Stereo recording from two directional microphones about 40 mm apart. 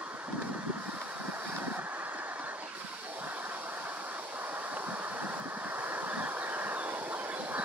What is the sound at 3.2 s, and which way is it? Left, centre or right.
Vehicle, right.